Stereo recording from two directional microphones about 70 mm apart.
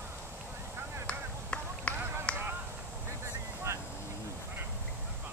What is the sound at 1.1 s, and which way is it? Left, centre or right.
Finger snapping, centre.